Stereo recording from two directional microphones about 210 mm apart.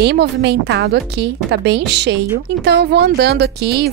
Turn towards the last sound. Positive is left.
turn(degrees=-50)  # may be behind; listen again after turning